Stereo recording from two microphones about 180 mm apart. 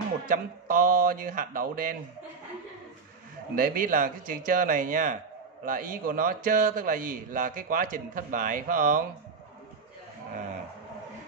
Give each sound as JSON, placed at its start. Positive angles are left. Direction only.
{"t": 0.3, "sound": "a man's voice", "side_deg": -50}
{"t": 3.5, "sound": "a man's voice", "side_deg": -50}